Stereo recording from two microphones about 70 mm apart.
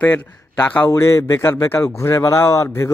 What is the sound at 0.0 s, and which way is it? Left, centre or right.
A man's voice, left.